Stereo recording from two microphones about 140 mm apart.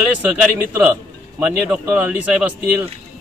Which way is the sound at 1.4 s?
5° right (ahead or behind).